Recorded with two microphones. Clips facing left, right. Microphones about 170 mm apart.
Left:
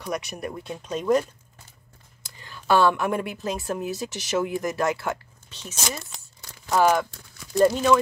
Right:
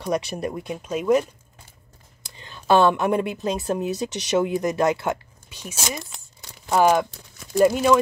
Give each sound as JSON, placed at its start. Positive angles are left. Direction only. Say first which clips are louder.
{"t": 0.0, "sound": "speech", "louder": "right 5 dB", "side_deg": -30}
{"t": 0.5, "sound": "speech", "louder": "right 2 dB", "side_deg": -15}
{"t": 2.2, "sound": "speech", "louder": "right 3 dB", "side_deg": -20}
{"t": 6.4, "sound": "a sound", "louder": "right 2 dB", "side_deg": -20}
{"t": 7.5, "sound": "speech", "louder": "right 2 dB", "side_deg": -10}